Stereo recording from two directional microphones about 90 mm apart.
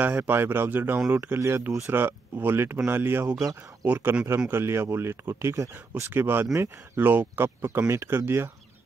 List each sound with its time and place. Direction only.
0.0 s speech: 20° right (ahead or behind)
3.3 s speech: 40° right (ahead or behind)
3.8 s speech: 20° right (ahead or behind)
4.5 s speech: 25° right (ahead or behind)
6.4 s speech: 35° right (ahead or behind)
7.0 s speech: 20° right (ahead or behind)